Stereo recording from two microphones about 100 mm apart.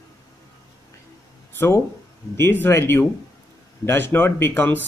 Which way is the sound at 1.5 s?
25° left (ahead or behind).